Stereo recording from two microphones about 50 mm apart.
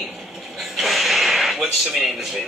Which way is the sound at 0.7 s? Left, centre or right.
Centre.